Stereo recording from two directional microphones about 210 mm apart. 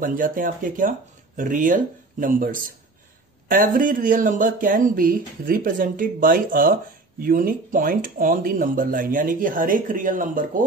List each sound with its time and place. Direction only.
0.0 s speech: 40° right (ahead or behind)